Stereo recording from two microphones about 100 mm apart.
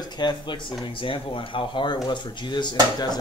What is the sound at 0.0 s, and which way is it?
Speech, 45° left (ahead or behind).